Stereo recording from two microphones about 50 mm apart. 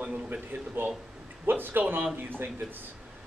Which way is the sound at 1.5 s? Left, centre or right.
Right.